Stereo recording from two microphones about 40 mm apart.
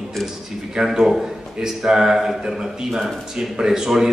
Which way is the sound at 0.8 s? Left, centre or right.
Centre.